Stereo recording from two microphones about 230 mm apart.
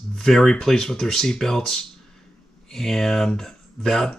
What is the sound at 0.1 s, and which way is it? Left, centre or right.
Speech, centre.